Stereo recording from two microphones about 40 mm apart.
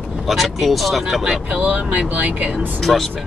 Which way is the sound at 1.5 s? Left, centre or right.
Right.